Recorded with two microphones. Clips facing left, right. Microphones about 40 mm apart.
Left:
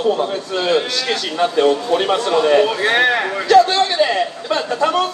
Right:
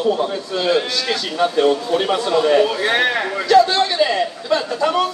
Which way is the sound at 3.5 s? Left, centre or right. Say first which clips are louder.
Left 1 dB; left.